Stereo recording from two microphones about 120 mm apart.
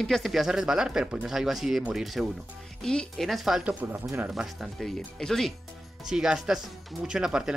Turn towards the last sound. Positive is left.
turn(degrees=-5)  # may be behind; listen again after turning